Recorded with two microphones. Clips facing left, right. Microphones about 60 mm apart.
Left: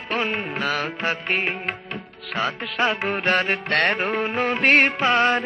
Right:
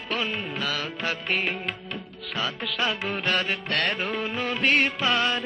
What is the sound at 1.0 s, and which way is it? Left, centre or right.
Music, left.